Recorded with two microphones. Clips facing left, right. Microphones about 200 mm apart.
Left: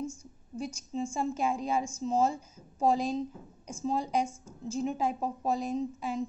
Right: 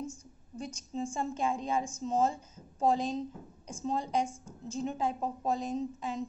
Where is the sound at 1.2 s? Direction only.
10° left (ahead or behind).